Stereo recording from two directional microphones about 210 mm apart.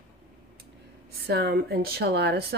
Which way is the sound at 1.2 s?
50° right (ahead or behind).